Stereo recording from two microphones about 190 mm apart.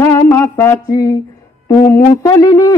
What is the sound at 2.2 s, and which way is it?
Speech, 15° left (ahead or behind).